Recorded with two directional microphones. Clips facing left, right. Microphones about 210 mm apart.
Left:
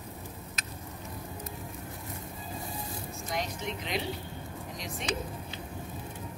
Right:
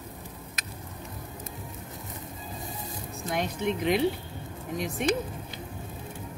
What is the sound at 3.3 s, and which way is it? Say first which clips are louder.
Speech: right 7 dB; 60° right (ahead or behind).